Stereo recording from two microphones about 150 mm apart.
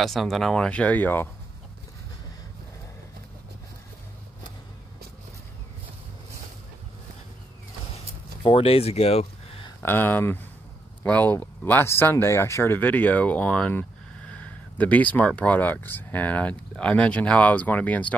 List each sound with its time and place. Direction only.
0.0 s speech: centre (ahead or behind)
8.4 s speech: 40° left (ahead or behind)
9.8 s speech: 15° left (ahead or behind)